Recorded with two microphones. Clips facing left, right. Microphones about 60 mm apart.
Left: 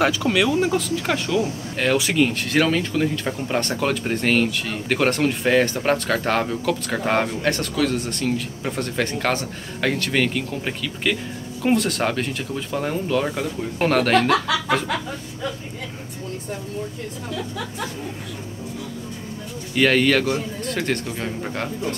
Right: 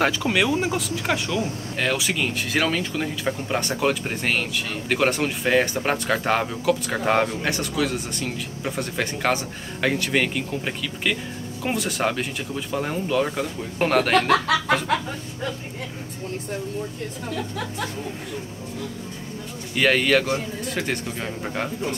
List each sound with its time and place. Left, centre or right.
0.2 s speech: right
0.7 s speech: centre
19.7 s speech: centre